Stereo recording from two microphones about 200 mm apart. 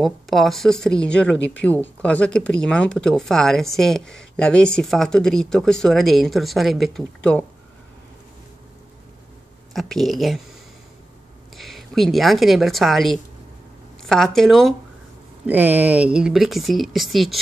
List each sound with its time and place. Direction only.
0.0 s speech: centre (ahead or behind)
9.8 s speech: centre (ahead or behind)
11.5 s a woman's voice: centre (ahead or behind)